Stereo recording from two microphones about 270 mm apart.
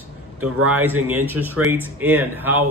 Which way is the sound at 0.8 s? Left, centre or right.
Centre.